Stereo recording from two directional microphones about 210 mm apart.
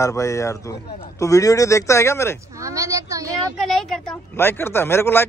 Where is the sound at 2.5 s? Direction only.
15° right (ahead or behind).